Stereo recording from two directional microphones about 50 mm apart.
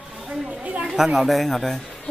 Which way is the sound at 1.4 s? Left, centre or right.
Centre.